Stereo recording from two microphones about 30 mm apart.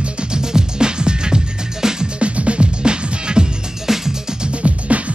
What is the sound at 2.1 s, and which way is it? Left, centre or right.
Music, right.